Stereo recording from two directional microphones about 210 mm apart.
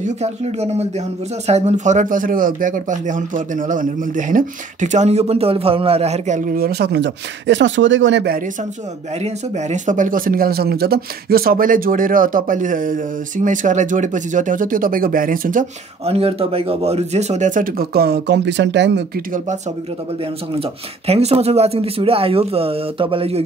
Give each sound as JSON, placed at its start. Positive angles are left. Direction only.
{"t": 0.0, "sound": "a man's voice", "side_deg": -30}
{"t": 9.2, "sound": "a man's voice", "side_deg": -35}
{"t": 16.1, "sound": "a man's voice", "side_deg": -30}
{"t": 21.1, "sound": "speech", "side_deg": -30}